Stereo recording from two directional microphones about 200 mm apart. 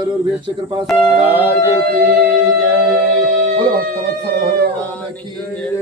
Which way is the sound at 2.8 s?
5° left (ahead or behind).